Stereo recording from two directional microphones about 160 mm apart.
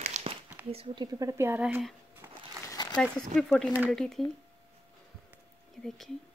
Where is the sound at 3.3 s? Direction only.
5° left (ahead or behind).